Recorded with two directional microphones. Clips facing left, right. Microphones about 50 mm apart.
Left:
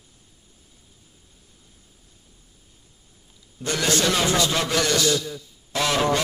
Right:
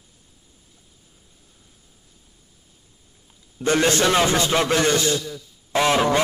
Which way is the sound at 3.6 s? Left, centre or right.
Right.